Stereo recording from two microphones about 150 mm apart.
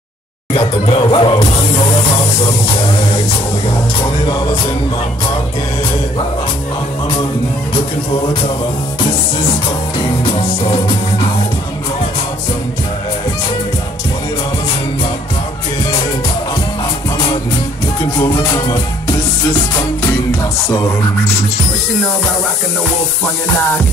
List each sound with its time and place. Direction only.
0.5 s speech: 35° left (ahead or behind)
18.0 s music: 20° left (ahead or behind)